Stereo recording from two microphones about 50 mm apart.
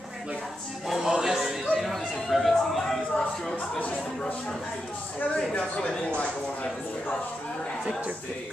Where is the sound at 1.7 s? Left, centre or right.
Centre.